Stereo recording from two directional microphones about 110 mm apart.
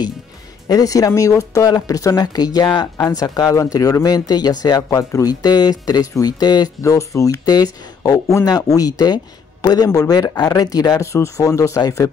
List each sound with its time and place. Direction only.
0.7 s speech: 35° left (ahead or behind)
4.8 s speech: 30° left (ahead or behind)
6.8 s speech: 30° left (ahead or behind)